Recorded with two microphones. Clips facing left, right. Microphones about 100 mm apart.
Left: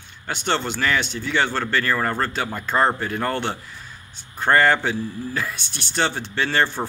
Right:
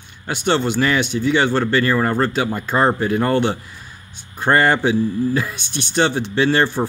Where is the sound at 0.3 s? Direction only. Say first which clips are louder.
Right 5 dB; 15° right (ahead or behind).